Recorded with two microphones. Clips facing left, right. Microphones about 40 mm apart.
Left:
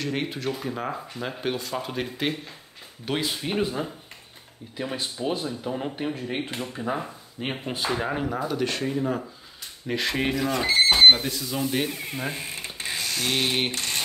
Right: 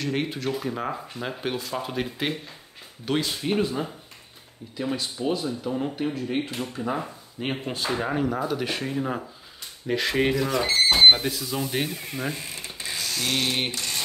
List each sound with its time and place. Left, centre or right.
0.0 s speech: centre
4.7 s speech: left
6.8 s speech: centre
9.8 s speech: centre
11.9 s speech: centre
13.7 s a sound: left